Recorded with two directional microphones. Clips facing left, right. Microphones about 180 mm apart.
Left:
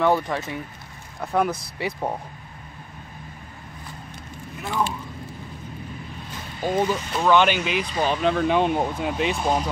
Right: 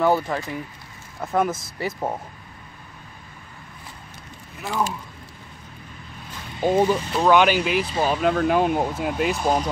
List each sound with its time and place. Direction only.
0.0 s speech: centre (ahead or behind)
6.6 s speech: 25° right (ahead or behind)
6.9 s speech: 15° right (ahead or behind)